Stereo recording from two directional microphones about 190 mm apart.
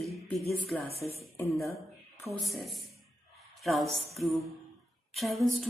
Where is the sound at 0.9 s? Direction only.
30° left (ahead or behind).